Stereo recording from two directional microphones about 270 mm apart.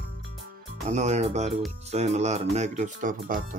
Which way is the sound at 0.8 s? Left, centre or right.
Right.